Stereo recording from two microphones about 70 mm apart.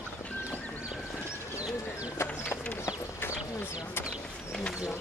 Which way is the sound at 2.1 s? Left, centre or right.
Left.